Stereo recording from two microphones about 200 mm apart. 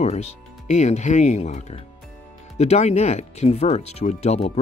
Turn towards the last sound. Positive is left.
turn(degrees=30)  # may be behind; listen again after turning